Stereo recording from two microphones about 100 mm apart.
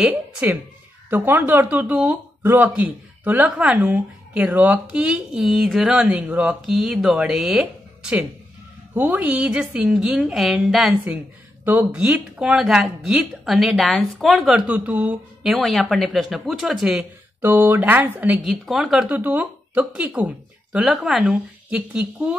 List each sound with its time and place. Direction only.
0.1 s speech: 15° right (ahead or behind)
6.7 s speech: 5° right (ahead or behind)
11.6 s speech: 20° right (ahead or behind)
11.9 s a woman's voice: 10° right (ahead or behind)
14.7 s speech: 15° right (ahead or behind)
15.5 s a woman's voice: centre (ahead or behind)
17.4 s speech: 20° right (ahead or behind)
18.5 s a woman's voice: centre (ahead or behind)
19.1 s speech: 15° right (ahead or behind)